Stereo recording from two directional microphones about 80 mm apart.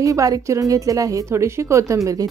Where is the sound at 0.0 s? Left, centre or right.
Right.